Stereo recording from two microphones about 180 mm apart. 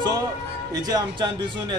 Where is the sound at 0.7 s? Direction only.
20° right (ahead or behind).